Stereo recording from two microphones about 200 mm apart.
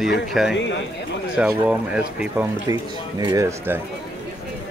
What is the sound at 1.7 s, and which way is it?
Speech, 5° right (ahead or behind).